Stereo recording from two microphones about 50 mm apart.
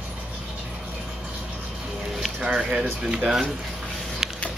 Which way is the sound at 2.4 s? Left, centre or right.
Centre.